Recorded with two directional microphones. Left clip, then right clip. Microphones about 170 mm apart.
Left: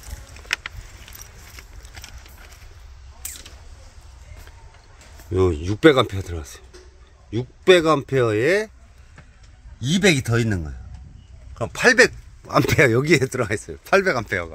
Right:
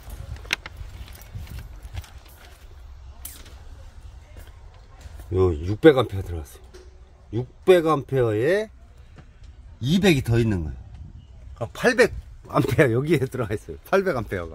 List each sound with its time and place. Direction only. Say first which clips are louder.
3.2 s a sound: left 8 dB; 30° left (ahead or behind)
5.3 s speech: left 2 dB; 20° left (ahead or behind)
9.8 s speech: left 2 dB; 25° left (ahead or behind); by 14.5 s 5° left (ahead or behind)